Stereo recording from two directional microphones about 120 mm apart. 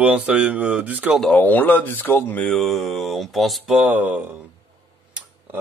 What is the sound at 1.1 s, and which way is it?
Speech, 10° left (ahead or behind).